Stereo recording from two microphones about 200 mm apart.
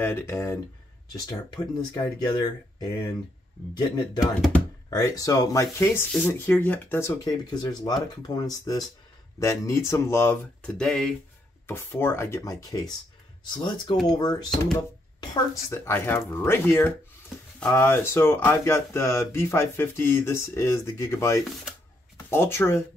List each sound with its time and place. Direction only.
0.0 s speech: 15° left (ahead or behind)